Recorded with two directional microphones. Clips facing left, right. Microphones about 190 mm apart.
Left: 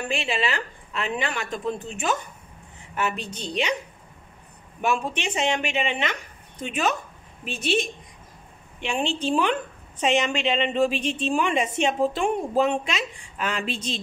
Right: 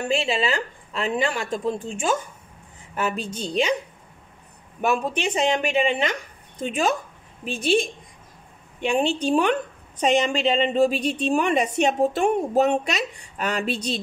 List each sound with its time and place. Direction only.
0.1 s a woman's voice: 30° right (ahead or behind)
4.8 s a woman's voice: 35° right (ahead or behind)
8.8 s a woman's voice: 40° right (ahead or behind)